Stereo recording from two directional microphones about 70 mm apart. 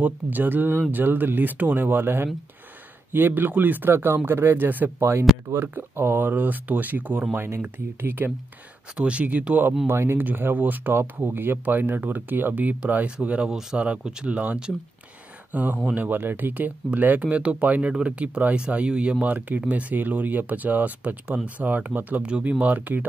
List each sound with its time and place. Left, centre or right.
0.0 s speech: right
7.3 s speech: right
8.9 s speech: centre